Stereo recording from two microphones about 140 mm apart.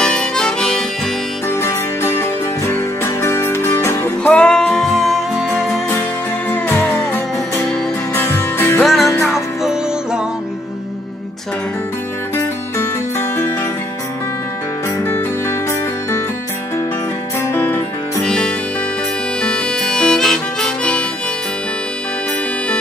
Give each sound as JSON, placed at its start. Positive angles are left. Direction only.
{"t": 0.0, "sound": "harmonica", "side_deg": 5}
{"t": 1.5, "sound": "music", "side_deg": 20}
{"t": 6.5, "sound": "music", "side_deg": 15}
{"t": 8.1, "sound": "music", "side_deg": 20}
{"t": 9.3, "sound": "music", "side_deg": -5}
{"t": 12.4, "sound": "music", "side_deg": 15}
{"t": 15.0, "sound": "music", "side_deg": 15}
{"t": 17.4, "sound": "music", "side_deg": 15}
{"t": 19.4, "sound": "harmonica", "side_deg": 5}